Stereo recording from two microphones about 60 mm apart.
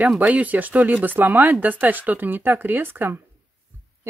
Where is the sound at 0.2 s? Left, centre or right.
Right.